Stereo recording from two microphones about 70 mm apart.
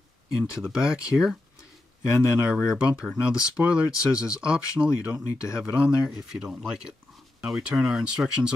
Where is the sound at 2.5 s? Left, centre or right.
Centre.